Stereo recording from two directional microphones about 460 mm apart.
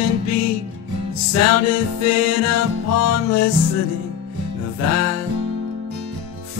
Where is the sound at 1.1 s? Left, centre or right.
Left.